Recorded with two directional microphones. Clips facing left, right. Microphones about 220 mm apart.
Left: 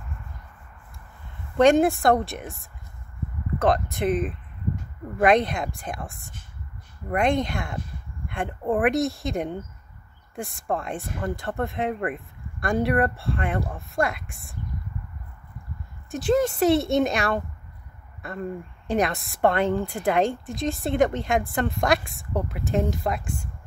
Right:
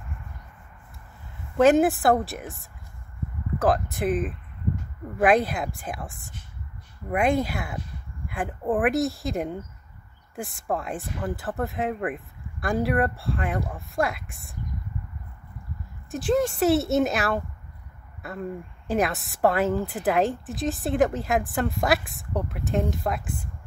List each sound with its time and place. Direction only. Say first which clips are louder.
1.6 s a woman's voice: even; 5° right (ahead or behind)
3.5 s a woman's voice: left 1 dB; centre (ahead or behind)
16.1 s a woman's voice: left 1 dB; centre (ahead or behind)
23.2 s speech: left 1 dB; 55° right (ahead or behind)